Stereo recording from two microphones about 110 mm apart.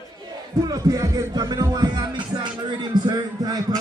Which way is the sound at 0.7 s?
30° right (ahead or behind).